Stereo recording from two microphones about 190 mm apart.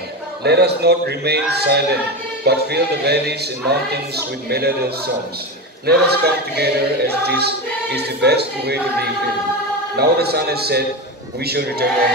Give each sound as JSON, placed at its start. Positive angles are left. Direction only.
{"t": 0.4, "sound": "choir", "side_deg": -60}
{"t": 9.9, "sound": "choir", "side_deg": -55}